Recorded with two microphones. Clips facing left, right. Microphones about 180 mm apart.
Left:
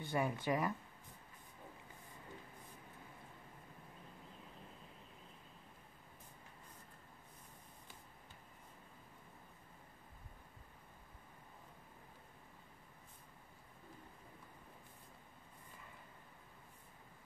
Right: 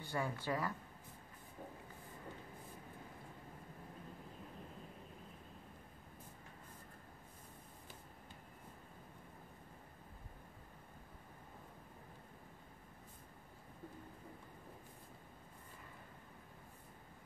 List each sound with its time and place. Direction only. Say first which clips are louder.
0.0 s speech: left 3 dB; 20° left (ahead or behind)